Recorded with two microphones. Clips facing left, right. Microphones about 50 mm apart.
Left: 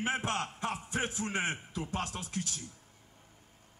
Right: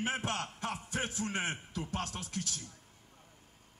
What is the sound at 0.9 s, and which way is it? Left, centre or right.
Speech, centre.